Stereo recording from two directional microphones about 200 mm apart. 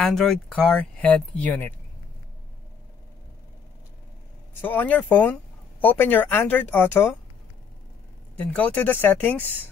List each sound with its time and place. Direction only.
0.0 s speech: centre (ahead or behind)
4.6 s speech: 10° left (ahead or behind)
8.4 s speech: 10° left (ahead or behind)